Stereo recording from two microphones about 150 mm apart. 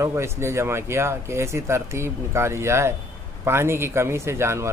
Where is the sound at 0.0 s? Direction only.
15° right (ahead or behind).